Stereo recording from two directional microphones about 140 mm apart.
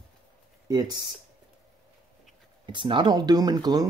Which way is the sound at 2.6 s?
35° right (ahead or behind).